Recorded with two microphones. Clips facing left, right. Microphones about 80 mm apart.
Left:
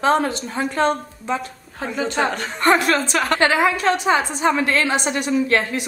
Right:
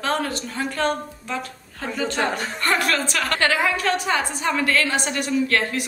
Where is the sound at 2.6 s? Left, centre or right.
Left.